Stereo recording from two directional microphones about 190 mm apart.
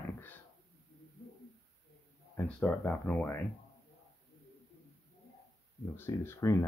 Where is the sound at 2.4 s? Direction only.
5° left (ahead or behind).